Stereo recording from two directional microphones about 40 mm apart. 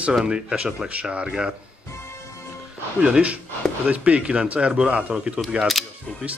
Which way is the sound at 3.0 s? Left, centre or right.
Right.